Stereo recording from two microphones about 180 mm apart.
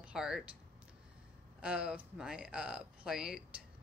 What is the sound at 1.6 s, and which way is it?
Speech, 5° right (ahead or behind).